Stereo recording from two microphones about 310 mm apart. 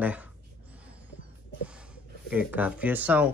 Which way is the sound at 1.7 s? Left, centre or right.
Centre.